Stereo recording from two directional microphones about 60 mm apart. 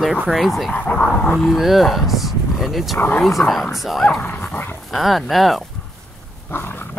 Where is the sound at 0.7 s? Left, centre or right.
Left.